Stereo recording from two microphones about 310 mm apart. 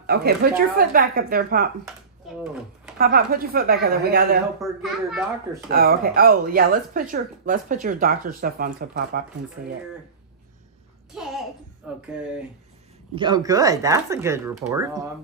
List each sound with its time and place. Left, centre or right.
0.0 s speech: right
3.0 s speech: right
4.6 s a child's voice: centre
5.7 s speech: right
11.8 s speech: centre
13.1 s speech: centre